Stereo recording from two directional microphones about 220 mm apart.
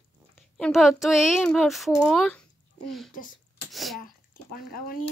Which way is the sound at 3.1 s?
40° left (ahead or behind).